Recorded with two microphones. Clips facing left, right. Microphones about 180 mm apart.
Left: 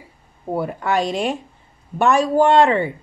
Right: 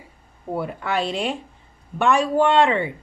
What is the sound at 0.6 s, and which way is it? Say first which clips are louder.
A woman's voice: left 4 dB; 45° left (ahead or behind).